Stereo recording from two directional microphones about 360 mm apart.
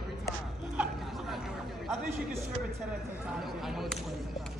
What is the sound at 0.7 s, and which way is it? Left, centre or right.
Chatter, centre.